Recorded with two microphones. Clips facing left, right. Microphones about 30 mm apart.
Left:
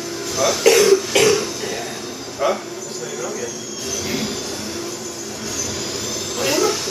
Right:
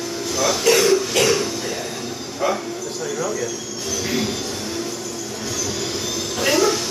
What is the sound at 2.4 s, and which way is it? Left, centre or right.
Speech, centre.